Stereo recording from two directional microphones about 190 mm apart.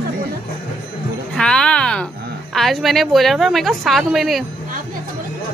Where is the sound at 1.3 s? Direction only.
5° left (ahead or behind).